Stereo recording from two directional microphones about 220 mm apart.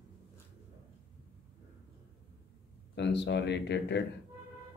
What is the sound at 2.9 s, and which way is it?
Speech, 50° left (ahead or behind).